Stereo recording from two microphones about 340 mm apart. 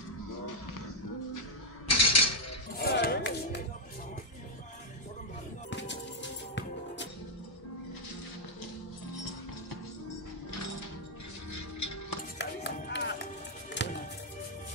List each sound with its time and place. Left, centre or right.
1.9 s a sound: left
2.8 s music: left
5.7 s music: left
11.5 s music: left
12.4 s music: left